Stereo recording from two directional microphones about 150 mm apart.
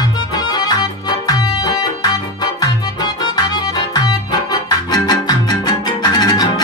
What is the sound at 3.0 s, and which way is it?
Music, 25° left (ahead or behind).